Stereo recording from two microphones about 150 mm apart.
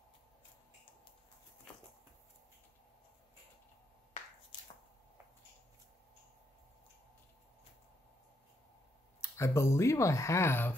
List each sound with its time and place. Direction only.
9.2 s speech: 20° left (ahead or behind)